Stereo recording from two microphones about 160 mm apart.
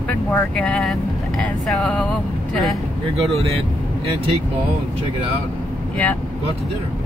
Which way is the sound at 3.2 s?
35° right (ahead or behind).